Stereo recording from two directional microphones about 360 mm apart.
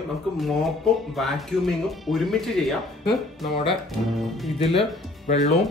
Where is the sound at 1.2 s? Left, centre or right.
Centre.